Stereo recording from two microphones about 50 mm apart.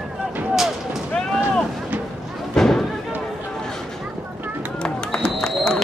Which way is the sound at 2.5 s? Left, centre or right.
Centre.